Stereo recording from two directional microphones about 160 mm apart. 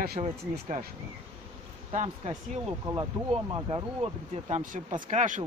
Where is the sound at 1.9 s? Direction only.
45° right (ahead or behind).